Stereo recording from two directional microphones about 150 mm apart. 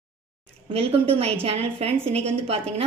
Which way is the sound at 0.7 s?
40° right (ahead or behind).